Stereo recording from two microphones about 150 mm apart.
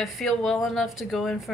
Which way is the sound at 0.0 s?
Centre (ahead or behind).